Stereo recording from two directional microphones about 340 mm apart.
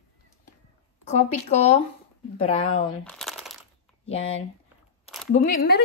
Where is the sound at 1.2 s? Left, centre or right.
Centre.